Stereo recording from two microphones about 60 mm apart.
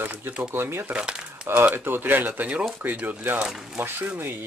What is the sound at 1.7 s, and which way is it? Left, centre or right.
Speech, right.